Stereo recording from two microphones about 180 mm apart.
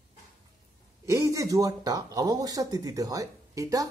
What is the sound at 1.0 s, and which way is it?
Speech, 15° right (ahead or behind).